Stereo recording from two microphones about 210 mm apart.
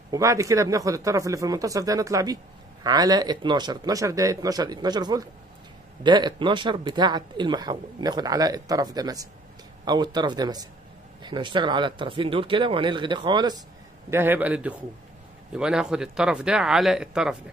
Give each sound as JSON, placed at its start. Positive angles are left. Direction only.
{"t": 0.1, "sound": "a man's voice", "side_deg": -15}
{"t": 14.1, "sound": "a man's voice", "side_deg": -10}